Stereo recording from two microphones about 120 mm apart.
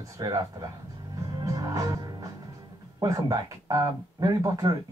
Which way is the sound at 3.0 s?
30° right (ahead or behind).